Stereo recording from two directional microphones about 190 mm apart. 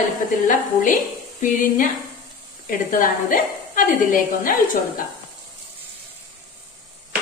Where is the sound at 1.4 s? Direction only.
45° left (ahead or behind).